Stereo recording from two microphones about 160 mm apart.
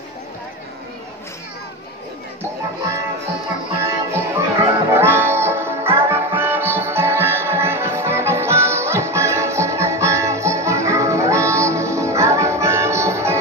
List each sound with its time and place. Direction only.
3.8 s music: 20° right (ahead or behind)